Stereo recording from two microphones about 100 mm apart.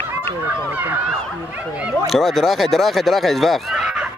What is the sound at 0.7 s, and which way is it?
Speech, 15° right (ahead or behind).